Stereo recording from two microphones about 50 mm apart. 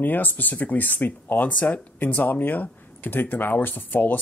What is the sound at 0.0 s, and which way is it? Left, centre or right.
Speech, left.